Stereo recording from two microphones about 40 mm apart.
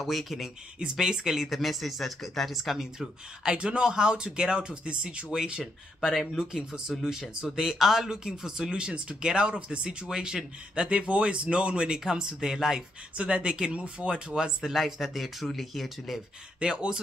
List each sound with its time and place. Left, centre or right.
0.0 s speech: centre
0.7 s speech: centre
1.6 s speech: centre
3.4 s speech: right
5.9 s speech: centre
6.3 s speech: centre
10.0 s speech: centre
13.1 s speech: right
14.0 s speech: centre
16.5 s speech: right